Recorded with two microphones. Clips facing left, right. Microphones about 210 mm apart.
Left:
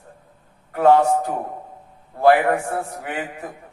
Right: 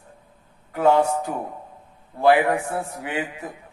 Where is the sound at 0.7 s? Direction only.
50° left (ahead or behind).